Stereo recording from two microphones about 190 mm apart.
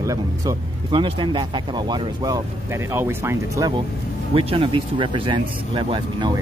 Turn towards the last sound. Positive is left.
turn(degrees=-20)  # may be behind; listen again after turning